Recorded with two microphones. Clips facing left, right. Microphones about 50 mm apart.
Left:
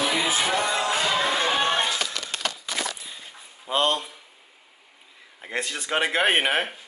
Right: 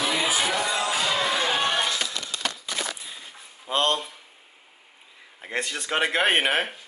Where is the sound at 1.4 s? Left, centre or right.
Left.